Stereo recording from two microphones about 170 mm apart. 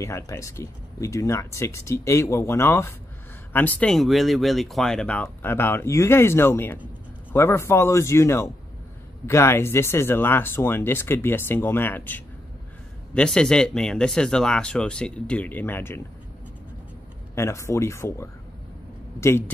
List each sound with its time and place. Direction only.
0.0 s speech: 15° left (ahead or behind)
17.4 s speech: 15° left (ahead or behind)